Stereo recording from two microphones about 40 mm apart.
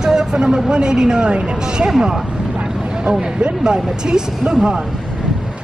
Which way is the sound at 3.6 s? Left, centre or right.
Centre.